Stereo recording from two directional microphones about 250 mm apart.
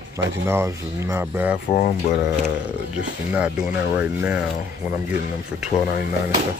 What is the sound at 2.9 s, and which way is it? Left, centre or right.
Speech, centre.